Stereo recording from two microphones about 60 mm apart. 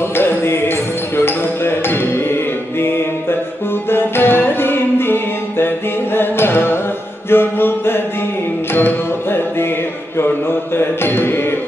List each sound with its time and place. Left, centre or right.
0.1 s music: left
7.2 s mantra: left
8.7 s music: left
10.1 s mantra: left